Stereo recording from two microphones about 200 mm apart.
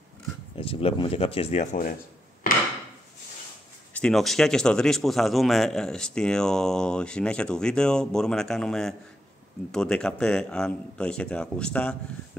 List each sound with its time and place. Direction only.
0.6 s speech: 30° left (ahead or behind)
3.9 s a man's voice: 5° left (ahead or behind)